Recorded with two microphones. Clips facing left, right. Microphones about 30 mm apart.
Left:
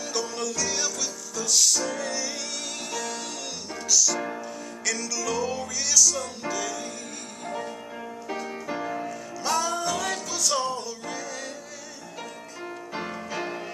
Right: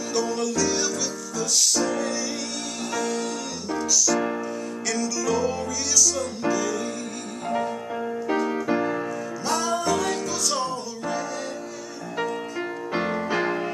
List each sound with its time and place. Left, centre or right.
0.1 s music: centre
7.4 s music: right
9.6 s music: centre
12.9 s music: right